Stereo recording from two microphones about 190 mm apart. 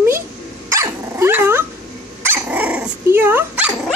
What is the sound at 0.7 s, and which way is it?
Dog, 15° right (ahead or behind).